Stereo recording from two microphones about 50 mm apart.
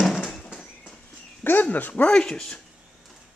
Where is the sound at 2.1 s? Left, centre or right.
Centre.